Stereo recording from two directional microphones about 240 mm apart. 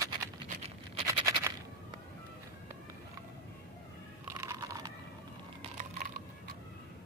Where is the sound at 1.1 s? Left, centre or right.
Centre.